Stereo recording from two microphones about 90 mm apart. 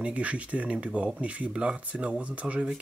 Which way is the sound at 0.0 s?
15° right (ahead or behind).